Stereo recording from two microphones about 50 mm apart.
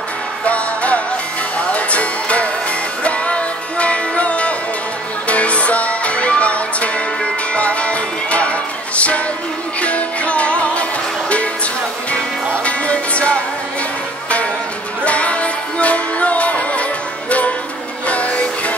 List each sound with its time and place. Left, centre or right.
0.5 s music: left
12.6 s music: left
15.0 s music: left